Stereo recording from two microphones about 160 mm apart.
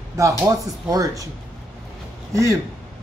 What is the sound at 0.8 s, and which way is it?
Chopping, 20° right (ahead or behind).